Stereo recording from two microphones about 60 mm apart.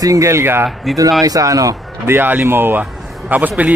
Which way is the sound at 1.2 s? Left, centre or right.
Right.